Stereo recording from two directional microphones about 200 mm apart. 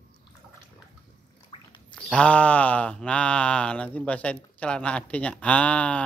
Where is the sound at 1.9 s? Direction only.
5° left (ahead or behind).